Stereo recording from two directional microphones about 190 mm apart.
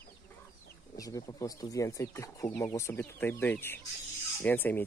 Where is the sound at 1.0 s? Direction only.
20° left (ahead or behind).